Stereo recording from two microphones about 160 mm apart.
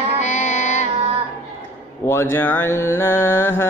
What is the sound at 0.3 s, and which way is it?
Music, 50° left (ahead or behind).